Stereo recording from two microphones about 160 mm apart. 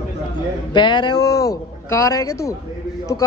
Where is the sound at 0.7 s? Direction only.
30° left (ahead or behind).